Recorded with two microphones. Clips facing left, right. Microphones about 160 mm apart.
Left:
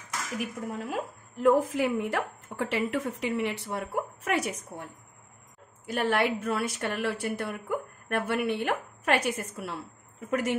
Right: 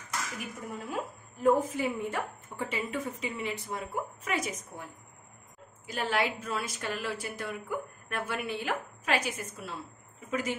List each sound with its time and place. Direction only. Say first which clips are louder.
0.4 s a woman's voice: left 5 dB; 90° left; by 4.8 s 65° left (ahead or behind)
5.9 s a woman's voice: left 4 dB; 60° left (ahead or behind)